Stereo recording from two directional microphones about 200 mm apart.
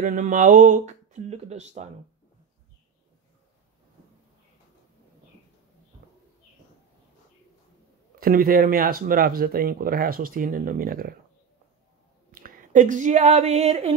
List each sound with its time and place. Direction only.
0.0 s speech: 40° right (ahead or behind)
8.2 s speech: 45° right (ahead or behind)
12.3 s a sound: 45° right (ahead or behind)